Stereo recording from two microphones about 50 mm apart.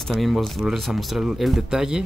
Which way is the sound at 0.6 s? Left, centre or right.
Centre.